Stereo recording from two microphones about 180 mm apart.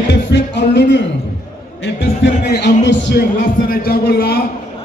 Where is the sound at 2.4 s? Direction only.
70° left (ahead or behind).